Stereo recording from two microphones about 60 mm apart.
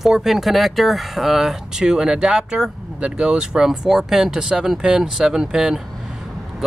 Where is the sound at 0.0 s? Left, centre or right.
Centre.